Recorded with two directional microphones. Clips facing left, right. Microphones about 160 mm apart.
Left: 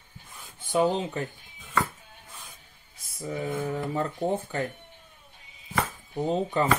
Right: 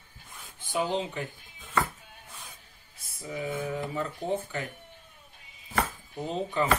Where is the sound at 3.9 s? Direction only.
40° left (ahead or behind).